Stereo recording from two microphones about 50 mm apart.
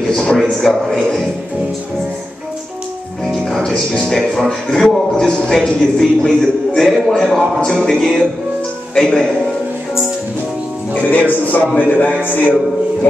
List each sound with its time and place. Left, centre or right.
0.1 s a sound: centre
0.6 s a man's voice: centre
3.4 s music: centre
4.4 s a man's voice: centre
10.9 s a man's voice: left